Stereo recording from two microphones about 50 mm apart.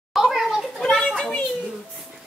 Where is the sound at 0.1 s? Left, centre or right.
Centre.